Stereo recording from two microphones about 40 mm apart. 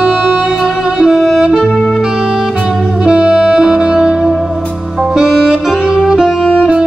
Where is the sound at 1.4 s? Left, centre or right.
Right.